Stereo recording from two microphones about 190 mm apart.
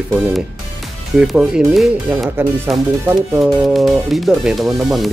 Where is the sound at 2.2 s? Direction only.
10° right (ahead or behind).